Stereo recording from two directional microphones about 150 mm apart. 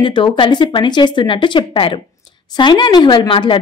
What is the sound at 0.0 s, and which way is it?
A woman's voice, 35° left (ahead or behind).